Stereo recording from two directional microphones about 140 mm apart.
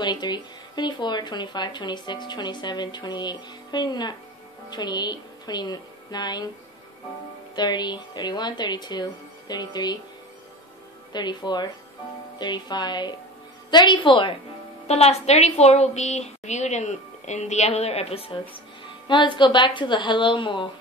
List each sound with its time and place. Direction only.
0.0 s a woman's voice: 30° left (ahead or behind)
7.5 s speech: 30° left (ahead or behind)
11.1 s speech: 30° left (ahead or behind)
14.9 s a woman's voice: 50° left (ahead or behind)